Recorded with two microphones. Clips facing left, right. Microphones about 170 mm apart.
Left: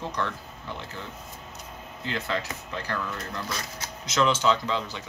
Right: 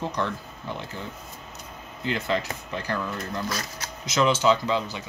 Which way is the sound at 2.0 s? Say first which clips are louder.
Right 4 dB; 15° right (ahead or behind).